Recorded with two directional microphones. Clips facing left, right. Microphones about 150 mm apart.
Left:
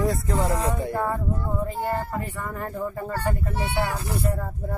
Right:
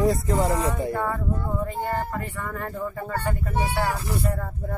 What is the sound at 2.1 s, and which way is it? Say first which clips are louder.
Speech: even; 10° left (ahead or behind).